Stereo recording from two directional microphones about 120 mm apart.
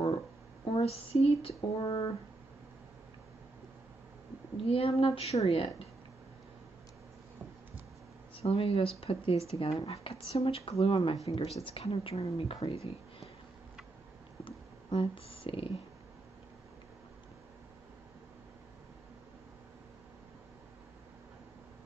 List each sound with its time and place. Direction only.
0.7 s speech: 55° left (ahead or behind)
1.8 s speech: 40° left (ahead or behind)
4.6 s speech: 50° left (ahead or behind)
5.0 s a woman's voice: 60° left (ahead or behind)
8.4 s a woman's voice: 50° left (ahead or behind)
14.4 s a sound: 45° left (ahead or behind)